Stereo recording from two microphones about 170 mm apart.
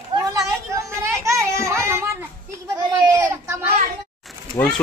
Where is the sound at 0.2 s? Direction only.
20° right (ahead or behind).